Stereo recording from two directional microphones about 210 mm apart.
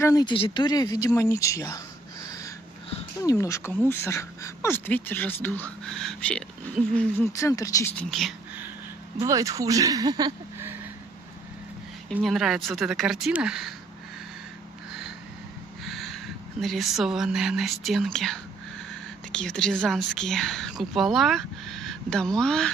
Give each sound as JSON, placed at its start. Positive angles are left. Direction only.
{"t": 0.0, "sound": "speech", "side_deg": 20}
{"t": 2.2, "sound": "a sound", "side_deg": 15}
{"t": 3.2, "sound": "speech", "side_deg": 15}
{"t": 9.2, "sound": "speech", "side_deg": -15}
{"t": 12.1, "sound": "speech", "side_deg": 0}
{"t": 15.8, "sound": "a sound", "side_deg": 0}
{"t": 16.6, "sound": "speech", "side_deg": 0}